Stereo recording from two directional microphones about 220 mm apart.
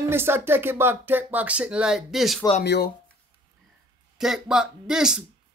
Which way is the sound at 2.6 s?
50° left (ahead or behind).